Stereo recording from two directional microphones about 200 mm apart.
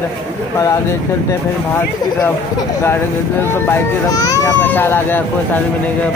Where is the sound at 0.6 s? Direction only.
15° left (ahead or behind).